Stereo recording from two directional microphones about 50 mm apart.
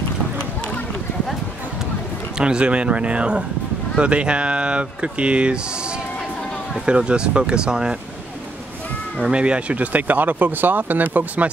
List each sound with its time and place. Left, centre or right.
2.3 s speech: centre
9.3 s speech: right